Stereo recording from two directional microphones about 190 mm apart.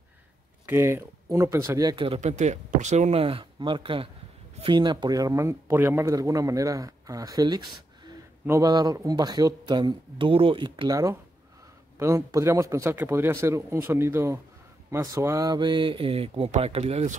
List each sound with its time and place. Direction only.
0.7 s speech: 15° right (ahead or behind)
2.1 s speech: 40° right (ahead or behind)